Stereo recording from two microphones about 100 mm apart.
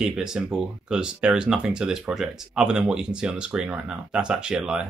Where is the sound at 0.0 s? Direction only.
5° right (ahead or behind).